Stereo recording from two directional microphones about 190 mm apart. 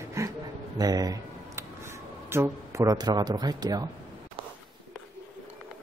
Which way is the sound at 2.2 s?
15° right (ahead or behind).